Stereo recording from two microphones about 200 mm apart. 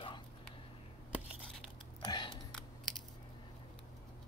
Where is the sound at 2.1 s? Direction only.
20° left (ahead or behind).